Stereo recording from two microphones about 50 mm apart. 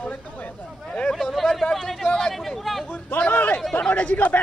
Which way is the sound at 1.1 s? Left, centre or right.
Centre.